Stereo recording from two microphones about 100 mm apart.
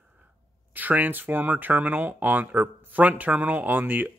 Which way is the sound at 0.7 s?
20° right (ahead or behind).